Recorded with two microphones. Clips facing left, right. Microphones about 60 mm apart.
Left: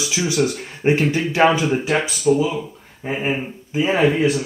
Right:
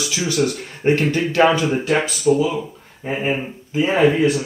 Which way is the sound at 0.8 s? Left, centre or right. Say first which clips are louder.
Even; centre.